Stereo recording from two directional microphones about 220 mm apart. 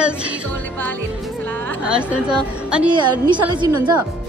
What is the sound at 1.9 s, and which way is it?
Music, 5° right (ahead or behind).